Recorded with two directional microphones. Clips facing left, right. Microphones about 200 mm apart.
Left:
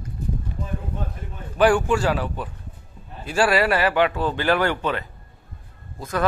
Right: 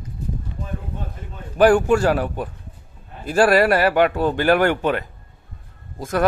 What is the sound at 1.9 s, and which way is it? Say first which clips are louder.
Speech: right 4 dB; 50° right (ahead or behind).